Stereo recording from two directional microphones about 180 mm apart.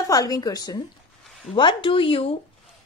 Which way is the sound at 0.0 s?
20° left (ahead or behind).